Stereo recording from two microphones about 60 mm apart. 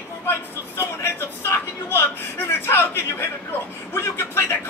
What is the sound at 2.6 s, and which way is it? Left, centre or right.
Speech, left.